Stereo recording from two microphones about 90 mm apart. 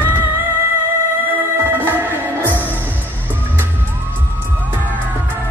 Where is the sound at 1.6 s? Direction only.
20° right (ahead or behind).